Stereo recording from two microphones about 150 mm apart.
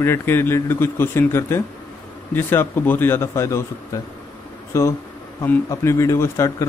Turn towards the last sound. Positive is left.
turn(degrees=20)  # may be behind; listen again after turning